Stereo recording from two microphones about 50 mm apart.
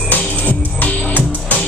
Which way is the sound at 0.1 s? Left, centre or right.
Left.